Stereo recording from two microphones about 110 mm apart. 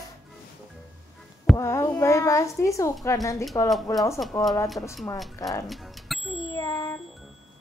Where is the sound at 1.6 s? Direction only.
25° left (ahead or behind).